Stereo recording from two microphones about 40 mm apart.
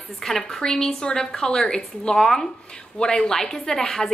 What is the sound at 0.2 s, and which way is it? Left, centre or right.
A woman's voice, centre.